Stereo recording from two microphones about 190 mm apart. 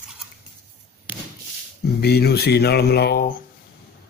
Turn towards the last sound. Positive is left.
turn(degrees=55)  # may be behind; listen again after turning